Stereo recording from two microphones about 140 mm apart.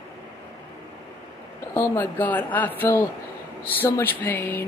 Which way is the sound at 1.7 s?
15° left (ahead or behind).